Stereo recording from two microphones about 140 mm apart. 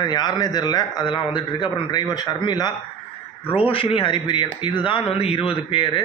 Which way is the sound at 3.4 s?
40° left (ahead or behind).